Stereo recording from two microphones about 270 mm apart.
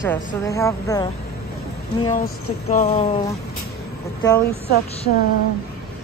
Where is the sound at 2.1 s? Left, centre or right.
Left.